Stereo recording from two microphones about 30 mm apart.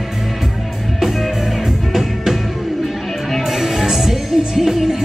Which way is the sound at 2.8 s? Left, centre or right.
Centre.